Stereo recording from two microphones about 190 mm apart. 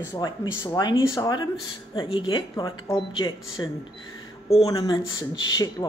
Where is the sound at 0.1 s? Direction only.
20° left (ahead or behind).